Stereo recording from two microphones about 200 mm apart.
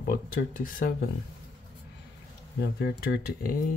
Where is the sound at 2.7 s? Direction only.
50° left (ahead or behind).